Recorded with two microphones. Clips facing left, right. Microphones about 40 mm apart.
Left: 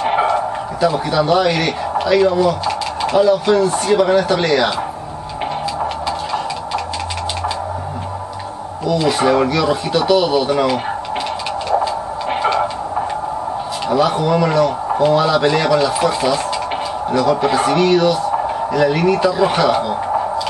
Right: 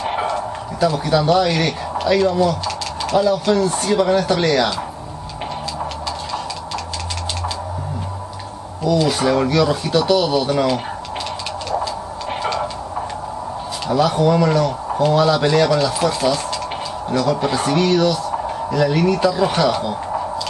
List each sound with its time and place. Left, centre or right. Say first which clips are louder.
0.0 s speech: left 5 dB; centre
8.8 s a man's voice: left 2 dB; centre
11.7 s a sound: left 6 dB; centre
13.8 s a man's voice: even; centre